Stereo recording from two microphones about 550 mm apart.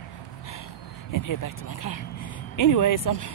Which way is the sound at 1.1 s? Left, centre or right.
Left.